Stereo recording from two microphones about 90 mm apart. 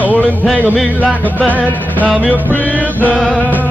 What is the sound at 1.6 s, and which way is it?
Music, 15° left (ahead or behind).